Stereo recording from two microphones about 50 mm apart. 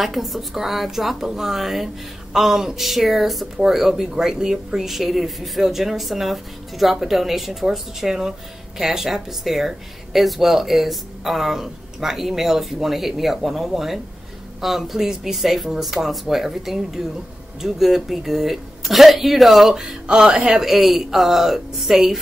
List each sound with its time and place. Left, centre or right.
0.0 s speech: centre
20.6 s speech: centre